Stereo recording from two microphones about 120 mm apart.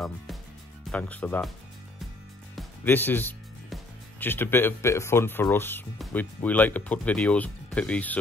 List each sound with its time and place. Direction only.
0.8 s speech: 10° left (ahead or behind)
2.8 s speech: 15° left (ahead or behind)